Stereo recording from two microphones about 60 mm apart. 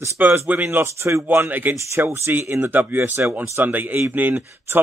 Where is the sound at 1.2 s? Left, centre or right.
Right.